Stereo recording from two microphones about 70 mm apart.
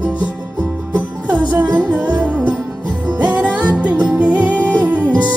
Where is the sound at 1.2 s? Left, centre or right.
Centre.